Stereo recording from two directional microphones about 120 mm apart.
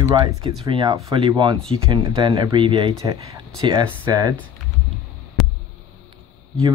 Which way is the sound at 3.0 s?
30° right (ahead or behind).